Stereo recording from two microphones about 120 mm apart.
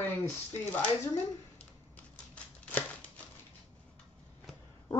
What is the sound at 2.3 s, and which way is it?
Scissors, 10° left (ahead or behind).